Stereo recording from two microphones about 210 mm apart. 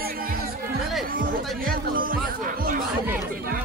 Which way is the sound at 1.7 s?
45° right (ahead or behind).